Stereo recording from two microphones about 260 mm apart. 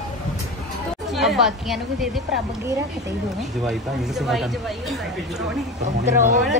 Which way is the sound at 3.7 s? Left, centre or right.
Centre.